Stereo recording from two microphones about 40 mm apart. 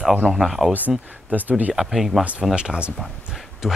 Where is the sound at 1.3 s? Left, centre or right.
Right.